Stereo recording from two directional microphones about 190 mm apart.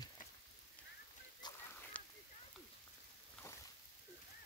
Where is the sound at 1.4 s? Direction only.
20° left (ahead or behind).